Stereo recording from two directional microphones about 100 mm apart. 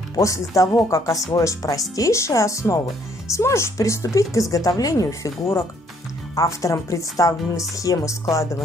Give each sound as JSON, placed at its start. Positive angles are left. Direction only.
{"t": 0.1, "sound": "a woman's voice", "side_deg": 35}